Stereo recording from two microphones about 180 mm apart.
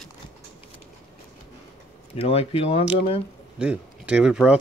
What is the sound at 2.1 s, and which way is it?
Speech, 35° left (ahead or behind).